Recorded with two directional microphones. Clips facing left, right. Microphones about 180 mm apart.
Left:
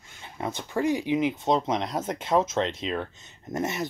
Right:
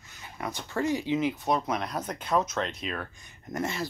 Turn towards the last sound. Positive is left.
turn(degrees=20)  # may be behind; listen again after turning